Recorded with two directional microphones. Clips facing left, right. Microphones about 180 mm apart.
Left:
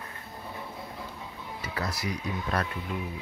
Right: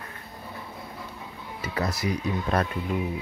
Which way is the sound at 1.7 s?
20° right (ahead or behind).